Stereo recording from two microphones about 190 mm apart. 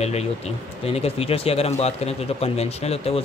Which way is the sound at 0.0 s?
35° left (ahead or behind).